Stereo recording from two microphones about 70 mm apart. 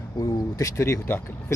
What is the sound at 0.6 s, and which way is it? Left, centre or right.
Speech, left.